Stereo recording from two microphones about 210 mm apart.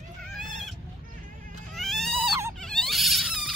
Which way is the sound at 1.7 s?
Centre (ahead or behind).